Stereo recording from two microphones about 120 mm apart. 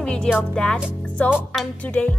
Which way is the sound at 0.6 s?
10° left (ahead or behind).